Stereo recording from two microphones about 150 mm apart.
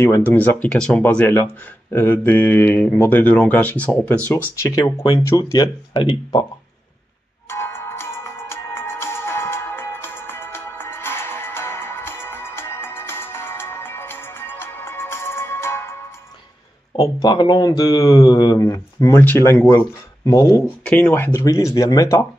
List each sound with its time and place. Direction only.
0.0 s speech: 15° left (ahead or behind)
4.6 s speech: 25° left (ahead or behind)
7.4 s music: 15° left (ahead or behind)
16.9 s speech: 30° left (ahead or behind)
20.8 s speech: 10° left (ahead or behind)